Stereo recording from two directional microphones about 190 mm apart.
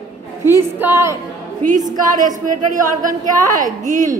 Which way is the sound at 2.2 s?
45° right (ahead or behind).